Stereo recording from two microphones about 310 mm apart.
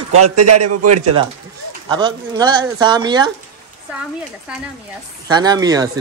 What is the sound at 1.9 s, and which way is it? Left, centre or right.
Speech, centre.